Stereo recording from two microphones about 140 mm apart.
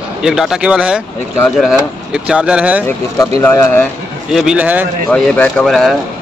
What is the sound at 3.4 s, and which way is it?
Speech, 15° left (ahead or behind).